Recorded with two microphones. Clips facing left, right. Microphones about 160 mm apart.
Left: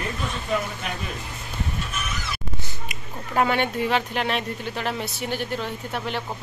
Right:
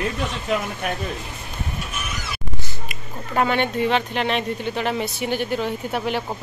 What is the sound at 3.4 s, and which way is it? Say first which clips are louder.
Speech: right 2 dB; 5° left (ahead or behind).